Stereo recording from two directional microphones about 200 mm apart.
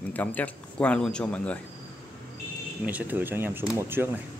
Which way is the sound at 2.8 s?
10° right (ahead or behind).